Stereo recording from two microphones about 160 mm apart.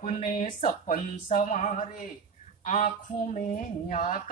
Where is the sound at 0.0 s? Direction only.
50° left (ahead or behind).